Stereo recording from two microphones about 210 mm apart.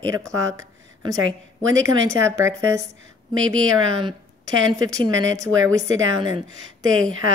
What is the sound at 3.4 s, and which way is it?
Speech, 75° right (ahead or behind).